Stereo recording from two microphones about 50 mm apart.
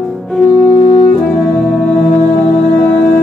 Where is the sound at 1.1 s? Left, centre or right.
Centre.